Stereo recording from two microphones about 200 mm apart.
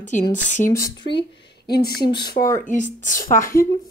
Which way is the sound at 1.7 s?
50° left (ahead or behind).